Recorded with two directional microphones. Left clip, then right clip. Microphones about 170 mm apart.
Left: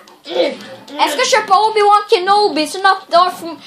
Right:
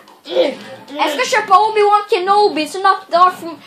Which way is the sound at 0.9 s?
35° left (ahead or behind).